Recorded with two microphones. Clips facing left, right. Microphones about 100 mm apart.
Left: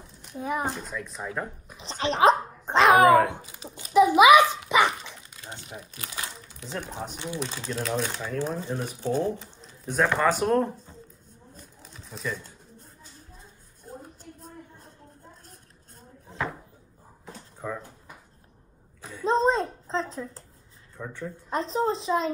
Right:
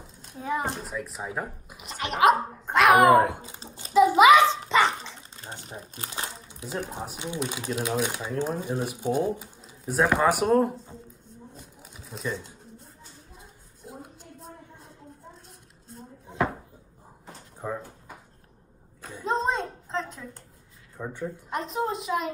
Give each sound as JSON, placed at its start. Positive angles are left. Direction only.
{"t": 0.4, "sound": "a child's voice", "side_deg": 15}
{"t": 0.7, "sound": "speech", "side_deg": -5}
{"t": 1.8, "sound": "speech", "side_deg": 30}
{"t": 3.4, "sound": "a sound", "side_deg": -30}
{"t": 4.1, "sound": "a child's voice", "side_deg": 15}
{"t": 4.6, "sound": "dog", "side_deg": 15}
{"t": 5.0, "sound": "dog", "side_deg": -20}
{"t": 5.7, "sound": "speech", "side_deg": -30}
{"t": 6.6, "sound": "speech", "side_deg": -10}
{"t": 11.8, "sound": "a sound", "side_deg": -5}
{"t": 17.6, "sound": "a sound", "side_deg": -20}
{"t": 19.2, "sound": "a sound", "side_deg": 35}
{"t": 21.0, "sound": "speech", "side_deg": -15}
{"t": 21.5, "sound": "a woman's voice", "side_deg": 30}